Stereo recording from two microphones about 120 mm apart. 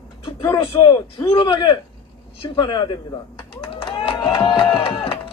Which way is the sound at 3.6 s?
45° left (ahead or behind).